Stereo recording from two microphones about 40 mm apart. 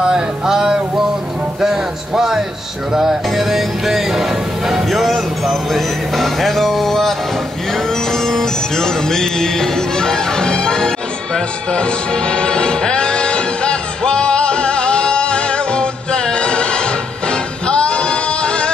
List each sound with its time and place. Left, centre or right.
0.0 s music: centre
1.6 s a sound: centre
2.9 s music: centre
4.8 s speech: centre
7.7 s music: centre